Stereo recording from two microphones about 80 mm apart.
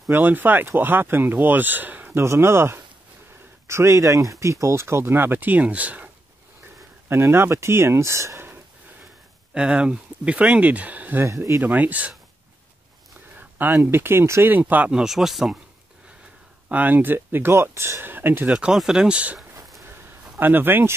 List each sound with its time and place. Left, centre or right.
0.1 s speech: right
2.2 s speech: right; by 6.0 s centre
7.1 s speech: right
9.5 s speech: centre
11.2 s speech: right
11.7 s speech: centre
13.4 s a sound: right
13.8 s speech: right
14.5 s speech: right
14.9 s speech: centre
16.6 s speech: centre
18.5 s speech: centre
19.9 s a sound: right